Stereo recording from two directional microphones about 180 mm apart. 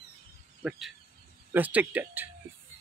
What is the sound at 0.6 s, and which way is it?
Speech, 5° right (ahead or behind).